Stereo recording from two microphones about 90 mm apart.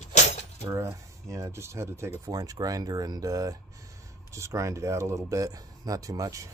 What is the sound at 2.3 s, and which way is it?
Speech, 45° right (ahead or behind).